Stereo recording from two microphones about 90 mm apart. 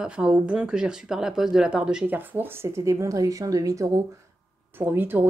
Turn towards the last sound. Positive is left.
turn(degrees=-20)  # may be behind; listen again after turning